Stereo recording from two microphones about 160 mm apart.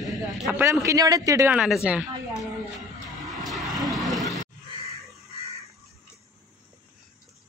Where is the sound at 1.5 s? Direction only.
5° right (ahead or behind).